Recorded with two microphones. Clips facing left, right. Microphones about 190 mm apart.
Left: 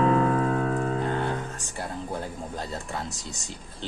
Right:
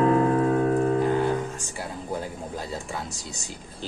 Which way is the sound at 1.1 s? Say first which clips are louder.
Right 5 dB; 5° right (ahead or behind).